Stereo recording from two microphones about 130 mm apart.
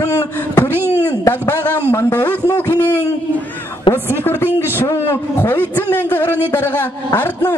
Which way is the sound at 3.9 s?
20° left (ahead or behind).